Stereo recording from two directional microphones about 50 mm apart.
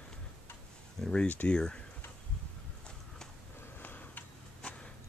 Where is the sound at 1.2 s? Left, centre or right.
Left.